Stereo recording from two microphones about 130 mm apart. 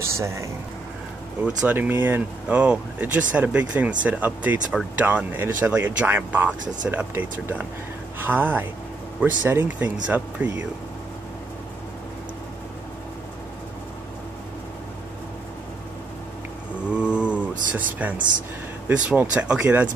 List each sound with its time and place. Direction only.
0.0 s speech: 20° right (ahead or behind)
1.7 s speech: 15° right (ahead or behind)
16.9 s mantra: 10° right (ahead or behind)
18.9 s speech: 10° right (ahead or behind)